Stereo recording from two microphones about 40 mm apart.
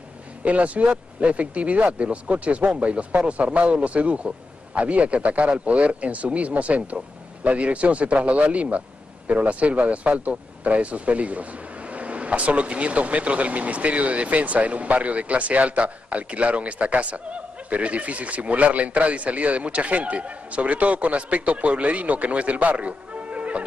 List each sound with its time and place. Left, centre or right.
0.4 s speech: right